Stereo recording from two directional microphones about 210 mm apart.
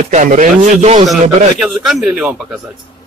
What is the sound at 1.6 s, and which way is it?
Speech, centre (ahead or behind).